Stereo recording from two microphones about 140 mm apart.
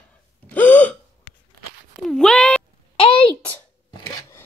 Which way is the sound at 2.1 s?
5° left (ahead or behind).